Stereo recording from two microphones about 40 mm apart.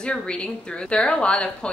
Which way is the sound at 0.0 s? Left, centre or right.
Left.